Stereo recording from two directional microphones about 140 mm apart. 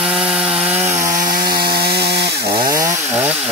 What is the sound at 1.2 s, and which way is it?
Chainsaw, 90° right.